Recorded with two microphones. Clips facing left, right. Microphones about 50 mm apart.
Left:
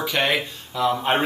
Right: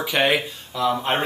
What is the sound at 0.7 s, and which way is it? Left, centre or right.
Speech, centre.